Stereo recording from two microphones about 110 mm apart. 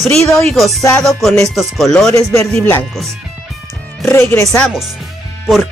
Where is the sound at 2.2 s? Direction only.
30° left (ahead or behind).